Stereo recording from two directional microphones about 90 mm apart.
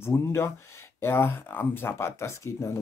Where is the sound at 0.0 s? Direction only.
30° left (ahead or behind).